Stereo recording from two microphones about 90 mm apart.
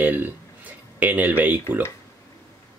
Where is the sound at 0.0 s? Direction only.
20° right (ahead or behind).